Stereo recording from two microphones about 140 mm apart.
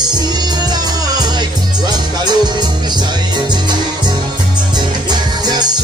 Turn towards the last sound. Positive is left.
turn(degrees=-30)  # may be behind; listen again after turning